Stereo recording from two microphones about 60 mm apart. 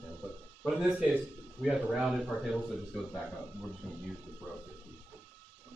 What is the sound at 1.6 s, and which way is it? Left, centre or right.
Speech, centre.